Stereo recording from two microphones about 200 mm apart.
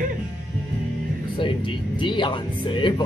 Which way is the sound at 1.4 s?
25° left (ahead or behind).